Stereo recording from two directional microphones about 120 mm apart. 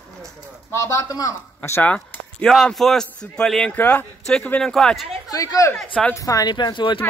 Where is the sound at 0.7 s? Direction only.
25° left (ahead or behind).